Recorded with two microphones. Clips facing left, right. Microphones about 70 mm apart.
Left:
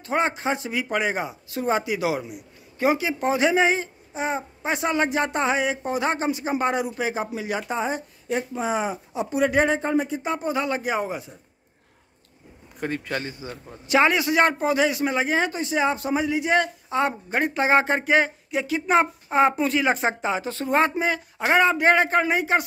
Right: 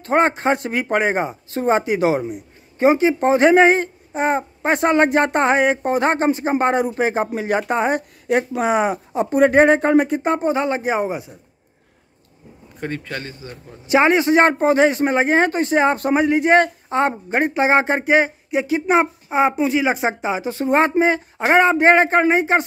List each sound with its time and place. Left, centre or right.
0.0 s speech: right
9.8 s a man's voice: right
12.8 s a man's voice: centre
13.8 s a man's voice: right
19.2 s speech: centre
20.7 s a man's voice: right